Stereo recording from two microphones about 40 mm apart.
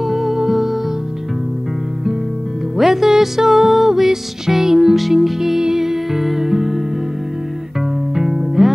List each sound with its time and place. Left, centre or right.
0.0 s music: centre
2.8 s music: centre
8.1 s music: centre